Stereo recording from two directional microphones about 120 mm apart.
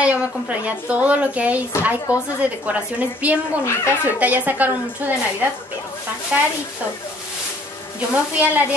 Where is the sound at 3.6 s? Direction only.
20° left (ahead or behind).